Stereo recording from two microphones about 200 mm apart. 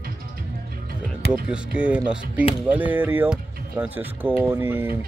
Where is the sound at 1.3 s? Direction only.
5° right (ahead or behind).